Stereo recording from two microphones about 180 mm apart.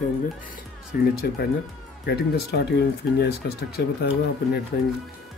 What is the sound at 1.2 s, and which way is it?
Speech, 60° left (ahead or behind).